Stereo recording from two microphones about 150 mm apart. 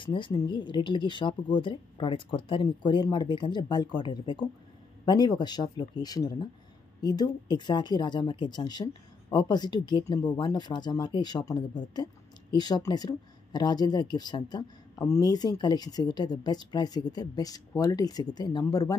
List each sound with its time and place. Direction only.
0.0 s speech: 35° left (ahead or behind)